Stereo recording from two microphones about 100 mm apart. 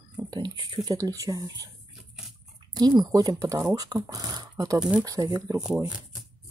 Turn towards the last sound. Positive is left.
turn(degrees=-35)  # may be behind; listen again after turning